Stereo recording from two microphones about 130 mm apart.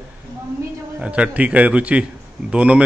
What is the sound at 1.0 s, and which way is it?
A man's voice, 10° right (ahead or behind).